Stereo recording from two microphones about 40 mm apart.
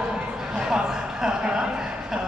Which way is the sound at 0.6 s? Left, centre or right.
Centre.